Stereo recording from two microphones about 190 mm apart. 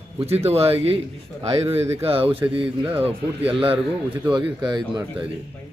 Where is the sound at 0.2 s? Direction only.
30° right (ahead or behind).